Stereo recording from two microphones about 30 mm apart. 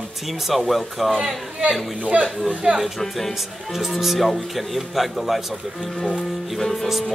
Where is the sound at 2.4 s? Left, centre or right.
Right.